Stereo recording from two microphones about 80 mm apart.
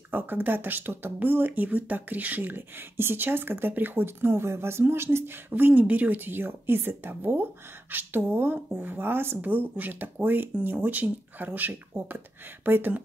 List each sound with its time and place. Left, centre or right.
0.1 s speech: right